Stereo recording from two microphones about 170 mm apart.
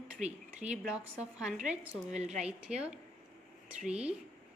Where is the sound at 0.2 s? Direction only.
45° right (ahead or behind).